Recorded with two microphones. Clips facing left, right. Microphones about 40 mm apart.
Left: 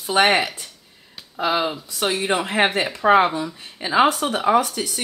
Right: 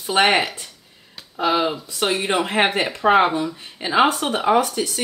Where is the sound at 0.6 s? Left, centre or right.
Centre.